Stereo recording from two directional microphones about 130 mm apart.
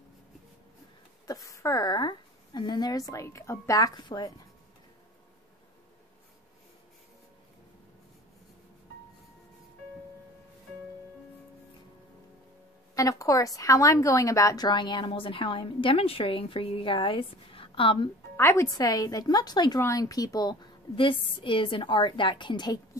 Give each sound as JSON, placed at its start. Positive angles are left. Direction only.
{"t": 1.2, "sound": "a woman's voice", "side_deg": 25}
{"t": 12.9, "sound": "a woman's voice", "side_deg": 25}
{"t": 18.3, "sound": "a woman's voice", "side_deg": 20}